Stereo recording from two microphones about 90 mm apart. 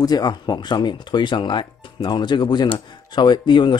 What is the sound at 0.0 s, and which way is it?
A man's voice, 45° left (ahead or behind).